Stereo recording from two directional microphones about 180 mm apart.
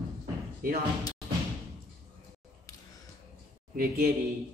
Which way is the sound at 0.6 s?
55° right (ahead or behind).